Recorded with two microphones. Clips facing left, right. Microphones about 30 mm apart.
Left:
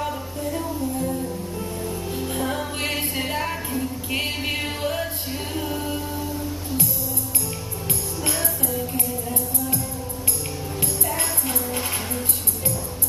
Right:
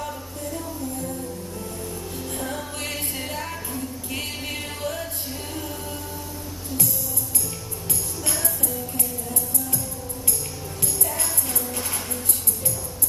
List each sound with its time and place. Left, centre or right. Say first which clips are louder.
0.0 s music: left 4 dB; left
8.4 s music: left 3 dB; left